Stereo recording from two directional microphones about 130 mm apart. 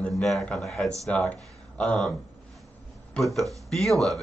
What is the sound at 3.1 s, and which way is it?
Speech, centre (ahead or behind).